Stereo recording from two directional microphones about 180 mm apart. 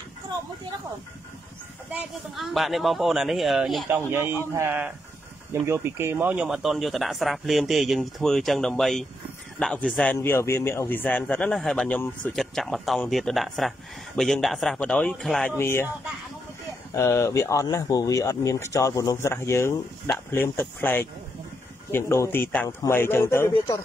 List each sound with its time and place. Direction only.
1.9 s a man's voice: 5° right (ahead or behind)
4.1 s a man's voice: 15° right (ahead or behind); by 15.9 s 15° left (ahead or behind)
16.9 s speech: 15° left (ahead or behind)